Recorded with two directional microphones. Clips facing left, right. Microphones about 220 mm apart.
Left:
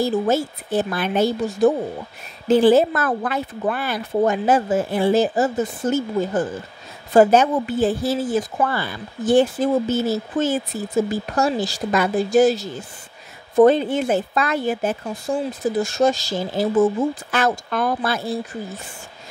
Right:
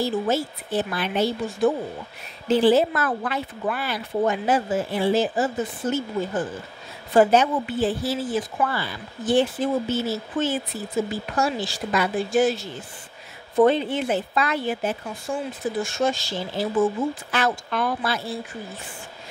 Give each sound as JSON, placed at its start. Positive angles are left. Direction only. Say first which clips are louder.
{"t": 0.0, "sound": "speech", "louder": "left 4 dB", "side_deg": 45}